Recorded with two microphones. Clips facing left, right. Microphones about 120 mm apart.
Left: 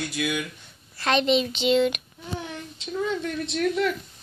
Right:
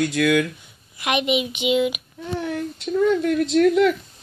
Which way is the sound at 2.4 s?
55° right (ahead or behind).